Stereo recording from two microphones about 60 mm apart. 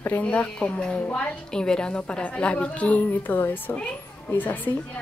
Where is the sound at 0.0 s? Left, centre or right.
Left.